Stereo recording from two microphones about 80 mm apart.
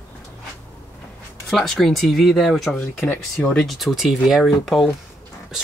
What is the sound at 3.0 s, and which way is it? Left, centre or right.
Speech, left.